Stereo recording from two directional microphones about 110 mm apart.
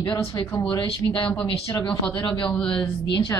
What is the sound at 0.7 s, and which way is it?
Speech, 50° left (ahead or behind).